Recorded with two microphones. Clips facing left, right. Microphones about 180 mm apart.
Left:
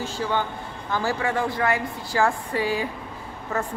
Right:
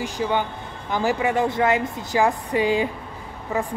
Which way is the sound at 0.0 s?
15° right (ahead or behind).